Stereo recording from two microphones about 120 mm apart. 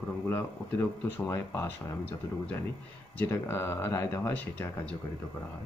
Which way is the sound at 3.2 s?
20° left (ahead or behind).